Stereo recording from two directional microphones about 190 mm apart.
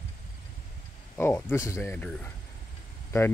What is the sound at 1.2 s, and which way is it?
Speech, 10° left (ahead or behind).